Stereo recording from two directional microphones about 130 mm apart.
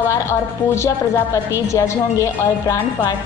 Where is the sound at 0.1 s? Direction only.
20° left (ahead or behind).